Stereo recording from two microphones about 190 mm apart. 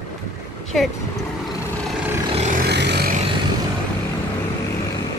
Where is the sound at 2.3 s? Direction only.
35° right (ahead or behind).